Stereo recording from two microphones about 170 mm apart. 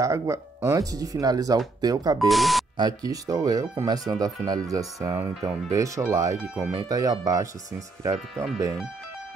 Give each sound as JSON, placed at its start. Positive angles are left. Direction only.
{"t": 0.0, "sound": "speech", "side_deg": -15}
{"t": 2.1, "sound": "speech", "side_deg": 0}
{"t": 3.0, "sound": "speech", "side_deg": -20}